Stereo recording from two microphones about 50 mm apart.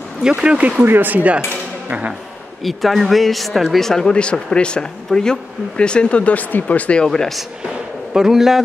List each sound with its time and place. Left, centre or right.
0.4 s speech: right
0.8 s speech: right
2.6 s speech: centre
4.1 s speech: left
7.1 s speech: centre
8.1 s a man's voice: centre